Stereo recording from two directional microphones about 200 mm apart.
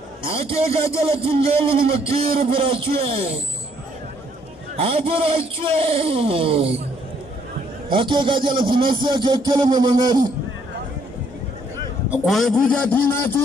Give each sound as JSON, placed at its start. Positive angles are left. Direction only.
{"t": 0.2, "sound": "a sound", "side_deg": -30}
{"t": 0.9, "sound": "speech", "side_deg": -30}
{"t": 4.7, "sound": "speech", "side_deg": -30}
{"t": 7.9, "sound": "speech", "side_deg": -25}
{"t": 12.1, "sound": "a man's voice", "side_deg": 0}